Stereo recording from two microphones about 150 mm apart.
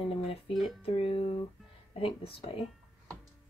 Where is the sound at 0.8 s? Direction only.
40° left (ahead or behind).